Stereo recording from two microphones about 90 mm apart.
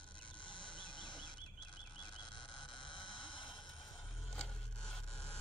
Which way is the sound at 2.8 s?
60° left (ahead or behind).